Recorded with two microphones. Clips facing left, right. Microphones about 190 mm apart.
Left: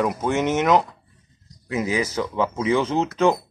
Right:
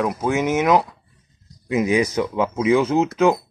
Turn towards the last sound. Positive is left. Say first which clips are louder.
# right 3 dB
turn(degrees=-10)  # may be behind; listen again after turning